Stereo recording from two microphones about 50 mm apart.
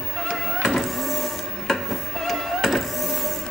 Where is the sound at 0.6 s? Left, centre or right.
Centre.